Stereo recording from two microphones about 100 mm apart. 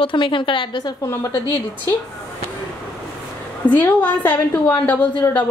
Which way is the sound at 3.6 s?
15° left (ahead or behind).